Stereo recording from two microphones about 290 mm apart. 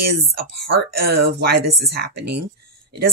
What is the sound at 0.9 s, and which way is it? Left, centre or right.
Speech, right.